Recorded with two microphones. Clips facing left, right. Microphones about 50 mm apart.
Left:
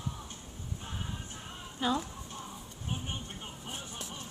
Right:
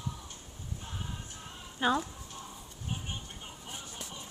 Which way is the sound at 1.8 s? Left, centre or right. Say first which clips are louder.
Right 3 dB; right.